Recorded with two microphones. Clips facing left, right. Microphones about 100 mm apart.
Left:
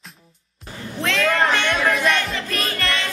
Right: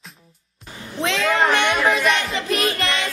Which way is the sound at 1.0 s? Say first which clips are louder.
Even; 20° right (ahead or behind).